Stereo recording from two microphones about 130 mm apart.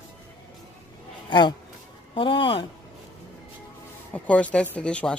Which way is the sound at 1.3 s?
35° left (ahead or behind).